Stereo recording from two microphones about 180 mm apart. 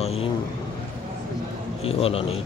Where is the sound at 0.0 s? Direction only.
35° left (ahead or behind).